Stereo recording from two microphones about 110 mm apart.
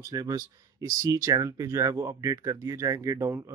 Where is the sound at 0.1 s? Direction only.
35° right (ahead or behind).